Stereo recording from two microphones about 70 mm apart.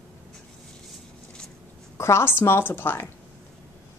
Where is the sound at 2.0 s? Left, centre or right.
Left.